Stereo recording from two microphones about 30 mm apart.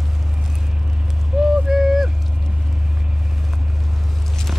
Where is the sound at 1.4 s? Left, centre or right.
Centre.